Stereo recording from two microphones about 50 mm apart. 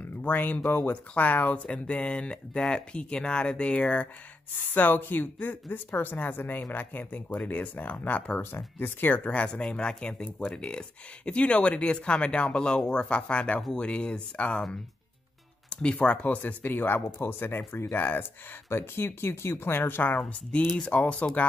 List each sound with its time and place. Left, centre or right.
0.2 s speech: left
4.7 s speech: left
8.5 s speech: left
9.3 s speech: left
15.7 s speech: left
16.3 s speech: left
18.7 s speech: left
20.7 s speech: left